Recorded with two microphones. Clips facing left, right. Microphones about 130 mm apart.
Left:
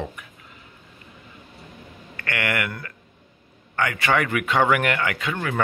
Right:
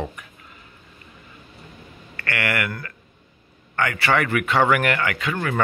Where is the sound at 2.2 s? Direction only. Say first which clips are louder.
Right 1 dB; 20° left (ahead or behind).